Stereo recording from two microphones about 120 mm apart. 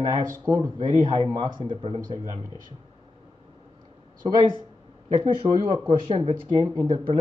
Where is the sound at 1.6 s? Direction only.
45° right (ahead or behind).